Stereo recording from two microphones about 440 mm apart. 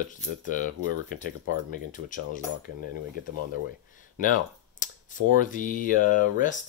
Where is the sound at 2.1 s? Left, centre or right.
Centre.